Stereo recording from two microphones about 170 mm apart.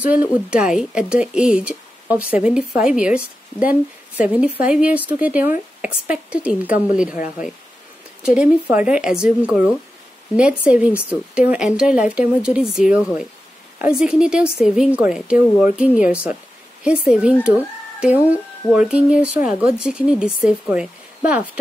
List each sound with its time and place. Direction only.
0.0 s speech: 10° right (ahead or behind)
8.4 s speech: 10° right (ahead or behind)